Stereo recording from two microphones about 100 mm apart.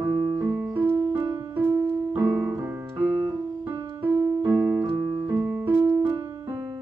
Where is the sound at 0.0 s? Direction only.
20° right (ahead or behind).